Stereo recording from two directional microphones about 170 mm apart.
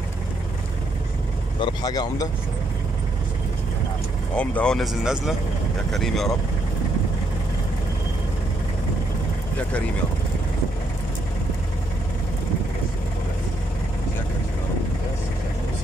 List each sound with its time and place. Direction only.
1.6 s speech: 25° left (ahead or behind)
4.4 s speech: 5° left (ahead or behind)
9.6 s speech: 10° left (ahead or behind)